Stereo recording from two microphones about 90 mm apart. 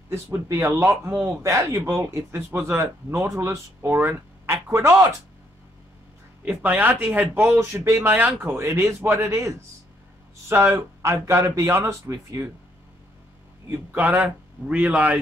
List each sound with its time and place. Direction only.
0.1 s speech: 30° right (ahead or behind)
6.4 s speech: 20° right (ahead or behind)
10.5 s speech: 20° right (ahead or behind)
11.0 s speech: 30° right (ahead or behind)
13.7 s a man's voice: 20° right (ahead or behind)